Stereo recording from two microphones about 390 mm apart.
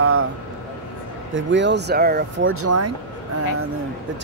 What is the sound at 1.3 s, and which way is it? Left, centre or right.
Speech, right.